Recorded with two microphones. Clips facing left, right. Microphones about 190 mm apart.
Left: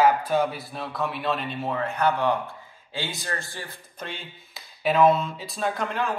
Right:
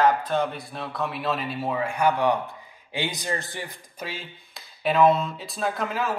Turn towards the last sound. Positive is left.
turn(degrees=-5)  # may be behind; listen again after turning